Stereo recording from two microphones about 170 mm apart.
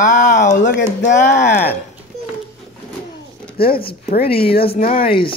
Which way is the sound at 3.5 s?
60° left (ahead or behind).